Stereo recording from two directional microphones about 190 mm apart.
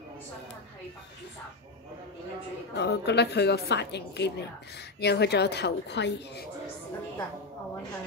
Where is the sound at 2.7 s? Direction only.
60° left (ahead or behind).